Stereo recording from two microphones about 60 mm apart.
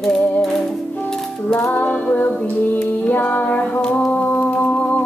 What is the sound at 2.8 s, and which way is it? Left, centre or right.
Music, left.